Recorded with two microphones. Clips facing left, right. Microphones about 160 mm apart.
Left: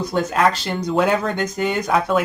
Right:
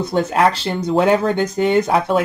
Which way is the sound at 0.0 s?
25° right (ahead or behind).